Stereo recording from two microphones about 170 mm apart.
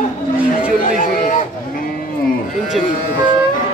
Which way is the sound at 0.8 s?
55° left (ahead or behind).